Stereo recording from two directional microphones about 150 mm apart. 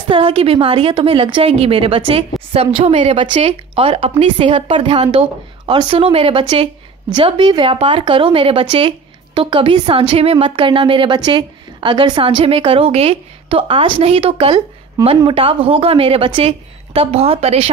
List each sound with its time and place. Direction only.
0.1 s speech: 35° right (ahead or behind)